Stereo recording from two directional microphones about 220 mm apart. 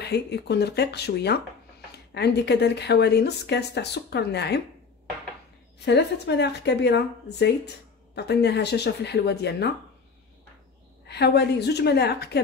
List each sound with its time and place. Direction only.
0.0 s a woman's voice: 50° left (ahead or behind)
5.9 s a woman's voice: 50° left (ahead or behind)
11.1 s a woman's voice: 50° left (ahead or behind)